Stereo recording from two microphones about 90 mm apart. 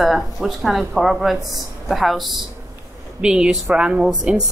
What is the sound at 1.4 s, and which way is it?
Speech, 45° right (ahead or behind).